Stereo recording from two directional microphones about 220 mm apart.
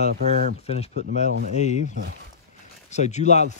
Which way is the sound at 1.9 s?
60° right (ahead or behind).